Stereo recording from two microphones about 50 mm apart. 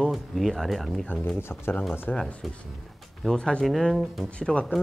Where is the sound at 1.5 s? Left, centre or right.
Left.